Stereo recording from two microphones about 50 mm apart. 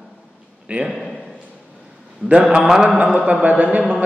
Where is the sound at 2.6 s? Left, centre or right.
Centre.